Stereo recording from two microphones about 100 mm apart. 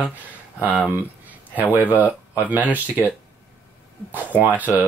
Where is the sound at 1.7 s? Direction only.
15° right (ahead or behind).